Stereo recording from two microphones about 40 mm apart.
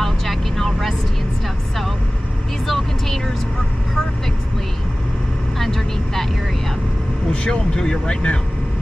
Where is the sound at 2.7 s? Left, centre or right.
Centre.